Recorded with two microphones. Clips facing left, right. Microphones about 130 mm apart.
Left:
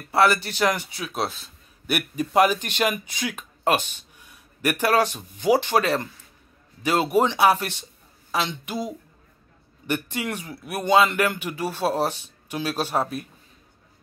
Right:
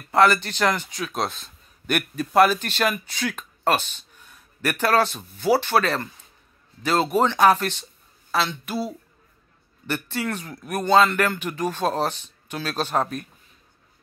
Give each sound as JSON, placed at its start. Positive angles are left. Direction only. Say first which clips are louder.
{"t": 0.1, "sound": "a man's voice", "louder": "right 2 dB", "side_deg": 10}